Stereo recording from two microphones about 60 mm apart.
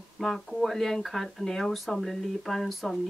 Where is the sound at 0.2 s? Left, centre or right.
Centre.